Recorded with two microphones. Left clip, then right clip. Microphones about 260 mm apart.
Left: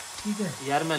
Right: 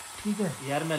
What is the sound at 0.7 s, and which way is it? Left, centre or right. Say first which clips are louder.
Speech: left 5 dB; left.